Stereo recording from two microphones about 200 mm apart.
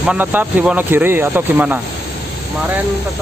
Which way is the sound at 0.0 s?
5° right (ahead or behind).